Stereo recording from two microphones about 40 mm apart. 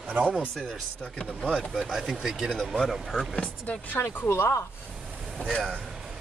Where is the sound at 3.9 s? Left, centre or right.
Left.